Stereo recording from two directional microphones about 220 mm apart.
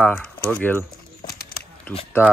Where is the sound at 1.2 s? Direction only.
45° left (ahead or behind).